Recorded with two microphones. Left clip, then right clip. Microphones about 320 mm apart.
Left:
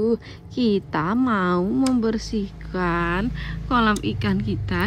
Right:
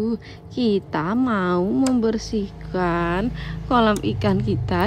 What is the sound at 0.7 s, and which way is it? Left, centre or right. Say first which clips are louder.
Speech: even; centre.